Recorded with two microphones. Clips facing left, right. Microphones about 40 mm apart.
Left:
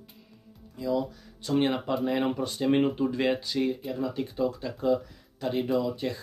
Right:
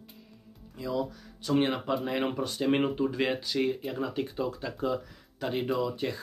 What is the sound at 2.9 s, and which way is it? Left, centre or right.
Speech, centre.